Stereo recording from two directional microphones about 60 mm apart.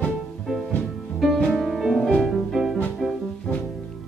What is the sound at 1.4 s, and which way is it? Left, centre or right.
Music, centre.